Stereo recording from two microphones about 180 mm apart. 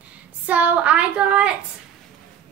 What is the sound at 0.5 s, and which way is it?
A woman's voice, 10° right (ahead or behind).